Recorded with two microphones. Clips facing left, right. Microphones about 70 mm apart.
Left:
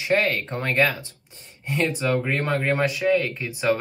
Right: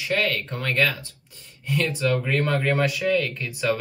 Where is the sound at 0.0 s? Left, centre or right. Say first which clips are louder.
Left 3 dB; left.